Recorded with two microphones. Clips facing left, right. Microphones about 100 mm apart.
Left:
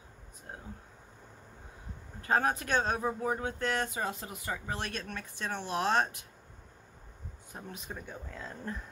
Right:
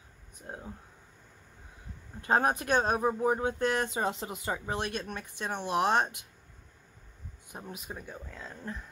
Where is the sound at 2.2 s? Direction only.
20° right (ahead or behind).